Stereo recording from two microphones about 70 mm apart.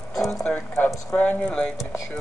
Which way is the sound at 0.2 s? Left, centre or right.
Centre.